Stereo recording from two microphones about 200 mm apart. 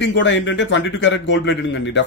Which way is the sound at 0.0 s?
65° left (ahead or behind).